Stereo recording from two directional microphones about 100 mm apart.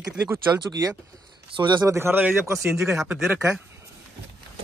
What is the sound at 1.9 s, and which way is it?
Speech, 25° right (ahead or behind).